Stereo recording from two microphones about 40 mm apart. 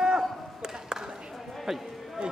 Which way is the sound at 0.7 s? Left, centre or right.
Centre.